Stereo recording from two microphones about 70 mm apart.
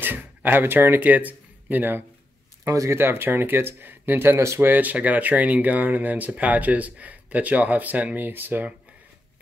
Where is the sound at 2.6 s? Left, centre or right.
Right.